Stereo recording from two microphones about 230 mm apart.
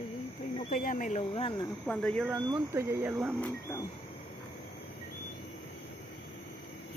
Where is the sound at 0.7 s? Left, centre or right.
Left.